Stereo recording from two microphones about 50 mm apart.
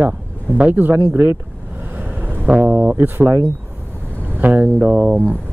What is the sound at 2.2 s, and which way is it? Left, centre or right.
Vehicle, right.